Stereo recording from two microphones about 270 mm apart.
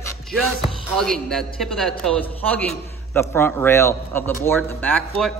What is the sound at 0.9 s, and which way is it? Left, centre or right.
A man's voice, centre.